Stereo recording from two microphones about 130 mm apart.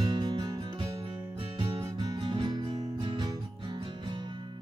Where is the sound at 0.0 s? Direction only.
35° right (ahead or behind).